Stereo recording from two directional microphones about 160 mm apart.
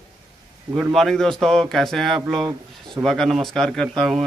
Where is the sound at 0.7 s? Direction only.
Centre (ahead or behind).